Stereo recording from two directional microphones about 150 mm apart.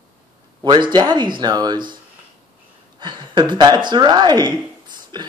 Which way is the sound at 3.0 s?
30° right (ahead or behind).